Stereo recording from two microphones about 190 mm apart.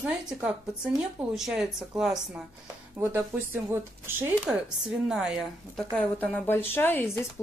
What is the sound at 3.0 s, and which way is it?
Speech, 15° right (ahead or behind).